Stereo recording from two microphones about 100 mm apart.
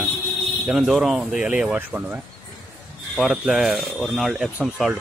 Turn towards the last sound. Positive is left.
turn(degrees=-5)  # may be behind; listen again after turning